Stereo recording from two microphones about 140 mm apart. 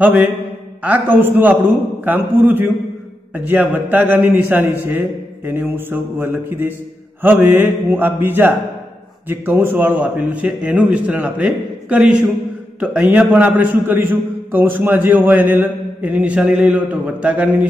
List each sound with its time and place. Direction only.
0.0 s a man's voice: 15° right (ahead or behind)